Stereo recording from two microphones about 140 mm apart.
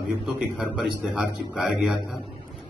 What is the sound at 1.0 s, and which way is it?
Speech, 5° right (ahead or behind).